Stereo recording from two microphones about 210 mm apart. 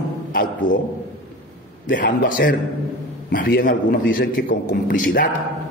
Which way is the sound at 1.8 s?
40° left (ahead or behind).